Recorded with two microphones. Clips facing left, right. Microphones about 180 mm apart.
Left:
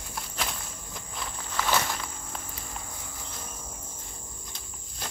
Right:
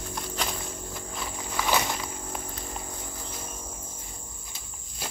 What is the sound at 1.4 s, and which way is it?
Walk, 10° right (ahead or behind).